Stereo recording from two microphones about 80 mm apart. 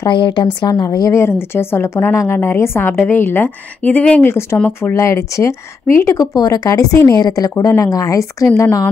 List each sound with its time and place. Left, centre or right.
0.0 s a woman's voice: left
0.7 s a woman's voice: left
1.1 s speech: left; by 4.2 s centre
4.2 s speech: left
4.6 s speech: centre
4.9 s speech: left
6.1 s a woman's voice: left